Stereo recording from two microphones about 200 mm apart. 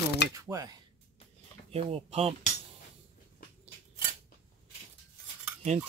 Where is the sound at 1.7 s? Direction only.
30° right (ahead or behind).